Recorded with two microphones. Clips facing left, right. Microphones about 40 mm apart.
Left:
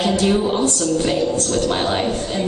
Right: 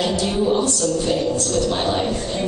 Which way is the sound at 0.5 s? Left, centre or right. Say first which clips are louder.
Even; left.